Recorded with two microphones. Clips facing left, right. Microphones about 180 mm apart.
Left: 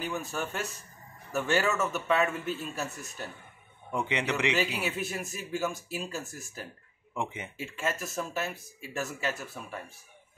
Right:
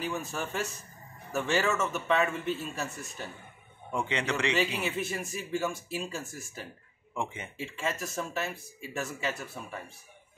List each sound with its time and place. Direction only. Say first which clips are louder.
0.0 s speech: even; centre (ahead or behind)
3.9 s speech: left 1 dB; 15° left (ahead or behind)
4.6 s speech: right 1 dB; centre (ahead or behind)
7.2 s speech: left 1 dB; 15° left (ahead or behind)
7.5 s speech: even; 5° left (ahead or behind)